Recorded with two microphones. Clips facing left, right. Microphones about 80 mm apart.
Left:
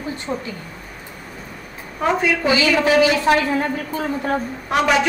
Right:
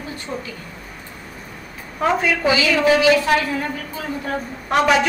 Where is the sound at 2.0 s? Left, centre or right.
Centre.